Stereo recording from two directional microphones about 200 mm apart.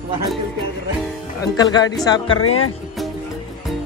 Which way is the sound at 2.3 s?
90° left.